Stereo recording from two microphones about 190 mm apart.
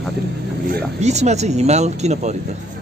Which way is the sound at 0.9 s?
35° right (ahead or behind).